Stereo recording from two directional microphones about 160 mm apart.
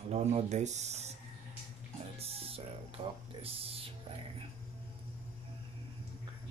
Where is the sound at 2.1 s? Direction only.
40° right (ahead or behind).